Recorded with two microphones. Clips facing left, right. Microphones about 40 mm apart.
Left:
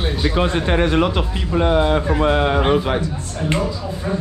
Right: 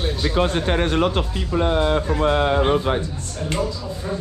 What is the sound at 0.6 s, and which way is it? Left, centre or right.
Speech, left.